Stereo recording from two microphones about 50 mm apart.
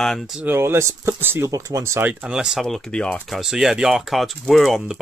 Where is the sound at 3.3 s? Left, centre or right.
Centre.